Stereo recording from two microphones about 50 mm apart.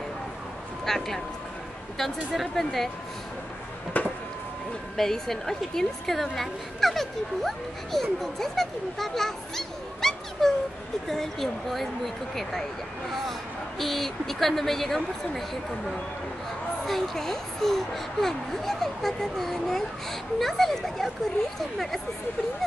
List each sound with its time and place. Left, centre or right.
0.8 s a child's voice: centre
3.9 s a sound: left
4.9 s a woman's voice: centre
13.7 s a woman's voice: centre
16.8 s a child's voice: centre